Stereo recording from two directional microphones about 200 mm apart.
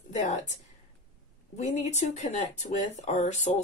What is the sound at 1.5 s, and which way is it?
Speech, 35° left (ahead or behind).